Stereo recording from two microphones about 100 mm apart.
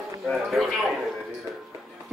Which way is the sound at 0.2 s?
Centre (ahead or behind).